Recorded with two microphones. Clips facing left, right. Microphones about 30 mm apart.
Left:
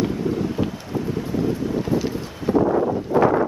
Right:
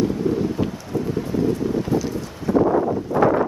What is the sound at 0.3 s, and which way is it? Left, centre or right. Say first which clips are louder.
Wind: right 2 dB; centre.